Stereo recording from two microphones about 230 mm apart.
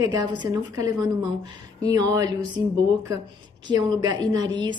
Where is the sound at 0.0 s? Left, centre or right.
Centre.